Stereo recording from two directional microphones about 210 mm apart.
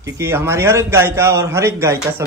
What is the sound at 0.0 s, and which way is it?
A man's voice, 10° right (ahead or behind).